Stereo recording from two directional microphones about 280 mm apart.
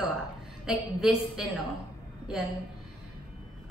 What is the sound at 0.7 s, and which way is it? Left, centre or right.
Speech, centre.